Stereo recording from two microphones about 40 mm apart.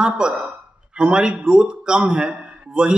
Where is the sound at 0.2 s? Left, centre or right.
Right.